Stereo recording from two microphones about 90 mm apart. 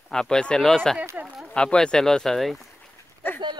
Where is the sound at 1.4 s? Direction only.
10° left (ahead or behind).